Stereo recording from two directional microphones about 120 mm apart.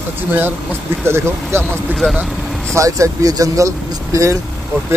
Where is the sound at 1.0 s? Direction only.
20° right (ahead or behind).